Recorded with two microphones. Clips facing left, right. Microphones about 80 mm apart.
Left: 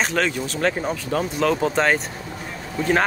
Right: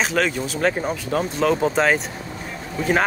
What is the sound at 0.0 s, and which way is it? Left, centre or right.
Speech, centre.